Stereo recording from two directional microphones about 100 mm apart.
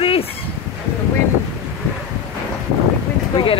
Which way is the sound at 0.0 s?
70° left (ahead or behind).